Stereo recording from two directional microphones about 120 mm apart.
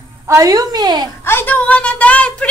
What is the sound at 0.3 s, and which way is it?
Speech, 30° right (ahead or behind).